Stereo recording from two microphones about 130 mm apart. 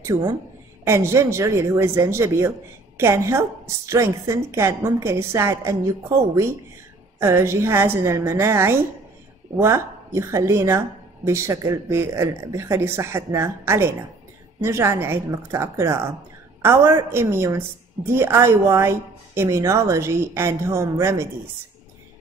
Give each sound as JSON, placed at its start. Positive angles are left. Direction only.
{"t": 0.0, "sound": "a woman's voice", "side_deg": -25}
{"t": 7.2, "sound": "a woman's voice", "side_deg": -20}